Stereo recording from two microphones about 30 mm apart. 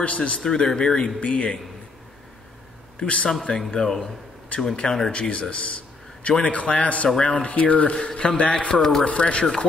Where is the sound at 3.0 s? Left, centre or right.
Left.